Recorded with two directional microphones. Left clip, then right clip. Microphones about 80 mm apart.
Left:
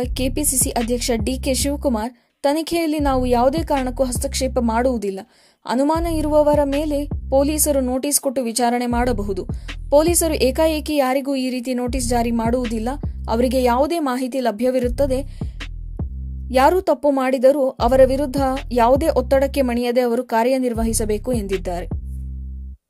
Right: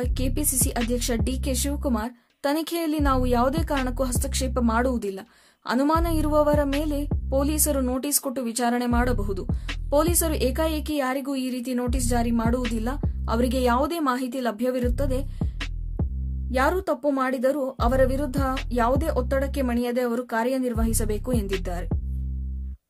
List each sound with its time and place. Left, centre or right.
0.0 s a woman's voice: left
16.7 s a woman's voice: left
17.2 s a sound: left
18.7 s speech: left
20.2 s a woman's voice: left